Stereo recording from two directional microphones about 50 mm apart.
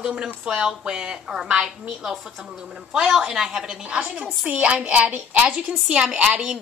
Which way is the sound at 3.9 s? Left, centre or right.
Right.